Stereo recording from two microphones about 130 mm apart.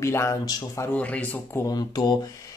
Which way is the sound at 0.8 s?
10° left (ahead or behind).